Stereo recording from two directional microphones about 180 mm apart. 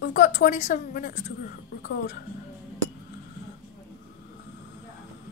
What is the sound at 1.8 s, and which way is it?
Speech, 60° left (ahead or behind).